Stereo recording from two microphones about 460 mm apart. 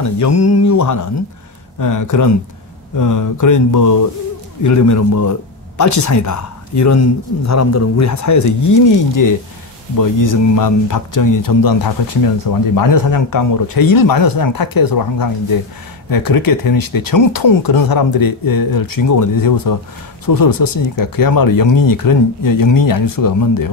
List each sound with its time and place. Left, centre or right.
0.0 s speech: left